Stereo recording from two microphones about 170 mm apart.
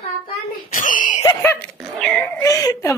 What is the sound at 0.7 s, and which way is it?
Screaming, 50° left (ahead or behind).